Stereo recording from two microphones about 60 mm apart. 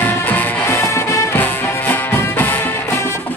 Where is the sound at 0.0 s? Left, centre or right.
Left.